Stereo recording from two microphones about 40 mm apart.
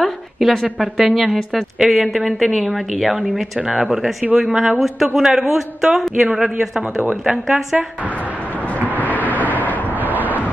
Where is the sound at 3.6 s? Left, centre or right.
Centre.